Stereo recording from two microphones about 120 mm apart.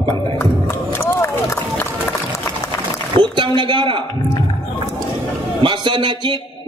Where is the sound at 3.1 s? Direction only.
45° right (ahead or behind).